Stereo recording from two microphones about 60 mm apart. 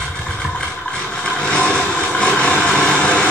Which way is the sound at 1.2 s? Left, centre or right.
Centre.